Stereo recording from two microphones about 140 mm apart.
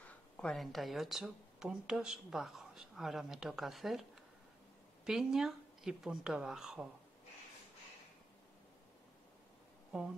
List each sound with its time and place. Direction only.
0.0 s speech: 5° left (ahead or behind)